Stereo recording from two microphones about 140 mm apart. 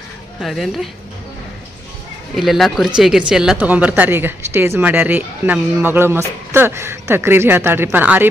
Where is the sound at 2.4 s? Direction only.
Centre (ahead or behind).